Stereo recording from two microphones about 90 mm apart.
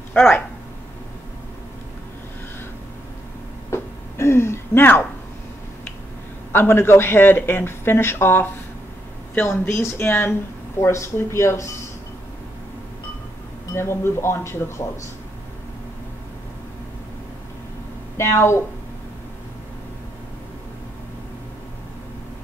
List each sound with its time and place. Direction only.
0.1 s speech: 20° left (ahead or behind)
3.7 s a sound: 30° left (ahead or behind)
6.5 s speech: 25° left (ahead or behind)
13.7 s speech: 25° left (ahead or behind)
18.1 s speech: 30° left (ahead or behind)